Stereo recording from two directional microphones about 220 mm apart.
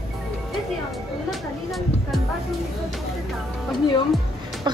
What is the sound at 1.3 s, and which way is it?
Speech, centre (ahead or behind).